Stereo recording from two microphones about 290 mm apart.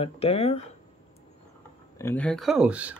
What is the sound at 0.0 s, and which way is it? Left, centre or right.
Speech, left.